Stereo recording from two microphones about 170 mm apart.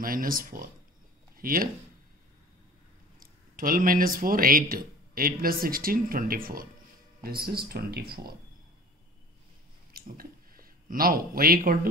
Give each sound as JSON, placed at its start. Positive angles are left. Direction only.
{"t": 0.0, "sound": "speech", "side_deg": -55}
{"t": 3.2, "sound": "speech", "side_deg": -55}
{"t": 9.9, "sound": "speech", "side_deg": -60}